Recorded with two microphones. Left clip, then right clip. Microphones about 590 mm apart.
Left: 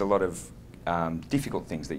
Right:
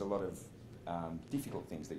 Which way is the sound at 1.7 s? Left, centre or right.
Left.